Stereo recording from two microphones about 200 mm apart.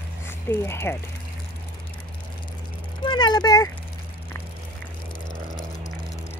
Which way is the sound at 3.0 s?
20° left (ahead or behind).